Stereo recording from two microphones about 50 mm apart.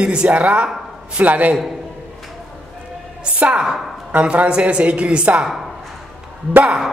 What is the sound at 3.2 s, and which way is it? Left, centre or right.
A woman's voice, right.